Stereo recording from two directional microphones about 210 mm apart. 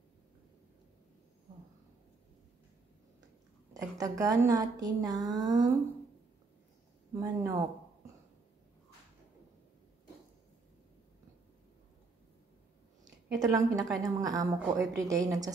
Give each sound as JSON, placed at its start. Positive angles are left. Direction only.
{"t": 3.7, "sound": "a woman's voice", "side_deg": -15}
{"t": 7.2, "sound": "a woman's voice", "side_deg": -15}
{"t": 13.4, "sound": "a woman's voice", "side_deg": -15}